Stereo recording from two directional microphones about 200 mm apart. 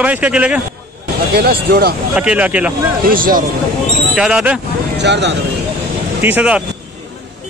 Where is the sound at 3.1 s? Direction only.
45° right (ahead or behind).